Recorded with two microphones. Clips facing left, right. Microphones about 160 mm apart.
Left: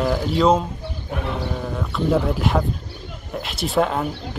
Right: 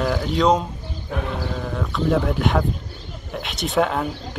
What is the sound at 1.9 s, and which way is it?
Speech, centre (ahead or behind).